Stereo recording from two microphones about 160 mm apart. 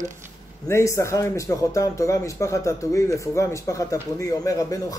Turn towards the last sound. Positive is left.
turn(degrees=20)  # may be behind; listen again after turning